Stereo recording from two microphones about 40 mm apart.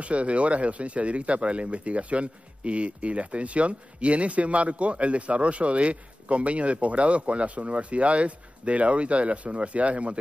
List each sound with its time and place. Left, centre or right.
0.0 s speech: right